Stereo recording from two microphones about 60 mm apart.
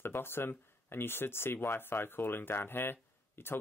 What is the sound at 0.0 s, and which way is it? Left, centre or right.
Speech, left.